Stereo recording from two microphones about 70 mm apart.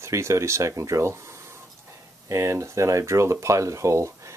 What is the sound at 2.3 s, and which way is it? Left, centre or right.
Speech, right.